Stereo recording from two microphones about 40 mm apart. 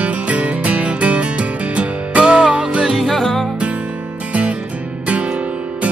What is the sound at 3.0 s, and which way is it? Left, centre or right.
Music, centre.